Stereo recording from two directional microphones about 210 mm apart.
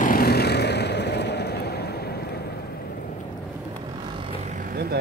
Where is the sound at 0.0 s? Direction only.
45° left (ahead or behind).